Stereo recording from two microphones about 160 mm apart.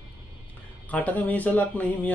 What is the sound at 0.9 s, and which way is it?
Speech, 10° left (ahead or behind).